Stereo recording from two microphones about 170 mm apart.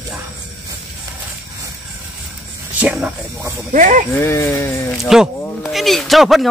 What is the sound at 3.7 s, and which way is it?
Speech, 50° right (ahead or behind).